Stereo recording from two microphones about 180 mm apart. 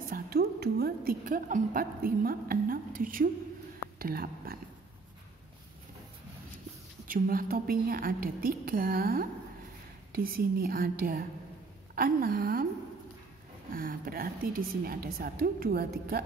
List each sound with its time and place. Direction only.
0.1 s music: 60° right (ahead or behind)
4.0 s speech: 55° right (ahead or behind)
7.1 s a woman's voice: 50° right (ahead or behind)
13.7 s a woman's voice: 50° right (ahead or behind)